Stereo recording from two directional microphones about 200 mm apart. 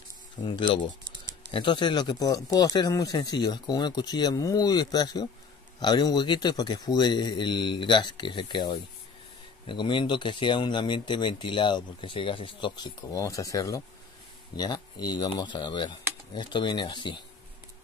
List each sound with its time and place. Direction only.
0.5 s speech: 25° left (ahead or behind)